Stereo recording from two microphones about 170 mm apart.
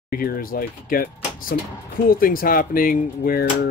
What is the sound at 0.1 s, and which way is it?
Speech, 60° left (ahead or behind).